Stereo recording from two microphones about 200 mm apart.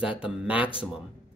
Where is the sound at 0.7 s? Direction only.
25° left (ahead or behind).